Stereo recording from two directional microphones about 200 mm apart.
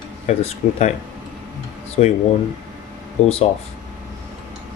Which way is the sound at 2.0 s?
30° left (ahead or behind).